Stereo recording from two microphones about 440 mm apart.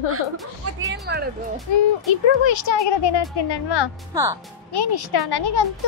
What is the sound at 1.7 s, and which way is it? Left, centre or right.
A child's voice, left.